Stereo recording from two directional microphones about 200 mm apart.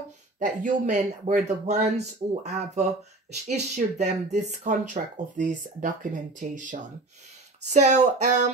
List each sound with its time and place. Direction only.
0.4 s speech: 40° right (ahead or behind)